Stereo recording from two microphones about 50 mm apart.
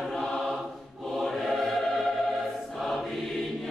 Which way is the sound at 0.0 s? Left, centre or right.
Centre.